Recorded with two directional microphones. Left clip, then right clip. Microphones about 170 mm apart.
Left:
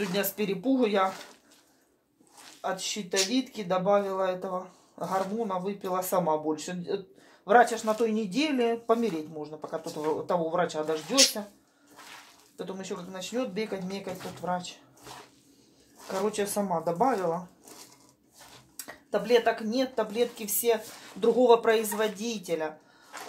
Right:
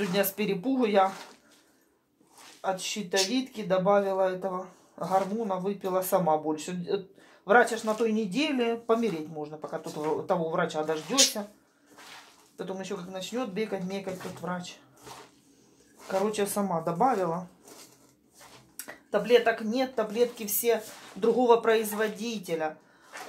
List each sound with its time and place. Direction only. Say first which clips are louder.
0.1 s speech: right 2 dB; 10° right (ahead or behind)
2.6 s speech: right 1 dB; 10° right (ahead or behind)
12.5 s speech: right 1 dB; 10° right (ahead or behind)
16.3 s speech: even; 20° right (ahead or behind)
18.8 s speech: right 1 dB; 10° right (ahead or behind)